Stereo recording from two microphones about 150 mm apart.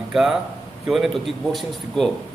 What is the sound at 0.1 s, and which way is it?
A man's voice, 5° right (ahead or behind).